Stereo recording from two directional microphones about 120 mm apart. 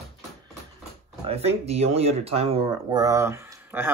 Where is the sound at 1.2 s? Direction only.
55° right (ahead or behind).